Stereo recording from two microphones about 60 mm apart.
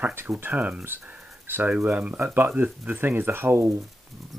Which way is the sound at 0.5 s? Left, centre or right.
Right.